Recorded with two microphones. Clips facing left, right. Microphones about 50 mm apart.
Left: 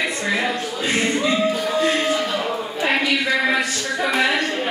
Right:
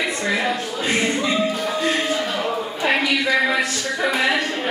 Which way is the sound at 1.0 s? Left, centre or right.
Centre.